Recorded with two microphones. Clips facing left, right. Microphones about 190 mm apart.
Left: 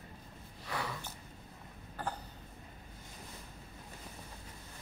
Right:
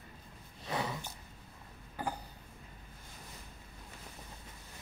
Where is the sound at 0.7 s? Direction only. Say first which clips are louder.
Right 3 dB; 20° right (ahead or behind).